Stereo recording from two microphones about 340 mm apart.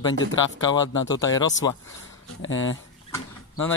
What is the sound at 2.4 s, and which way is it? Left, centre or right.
Speech, left.